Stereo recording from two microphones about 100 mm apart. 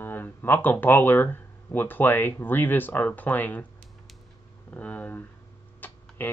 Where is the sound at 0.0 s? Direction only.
20° left (ahead or behind).